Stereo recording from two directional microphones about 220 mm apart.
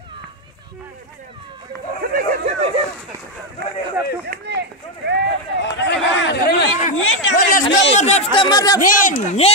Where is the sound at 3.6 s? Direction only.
50° right (ahead or behind).